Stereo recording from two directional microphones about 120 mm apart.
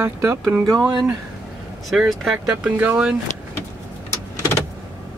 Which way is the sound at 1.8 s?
Centre (ahead or behind).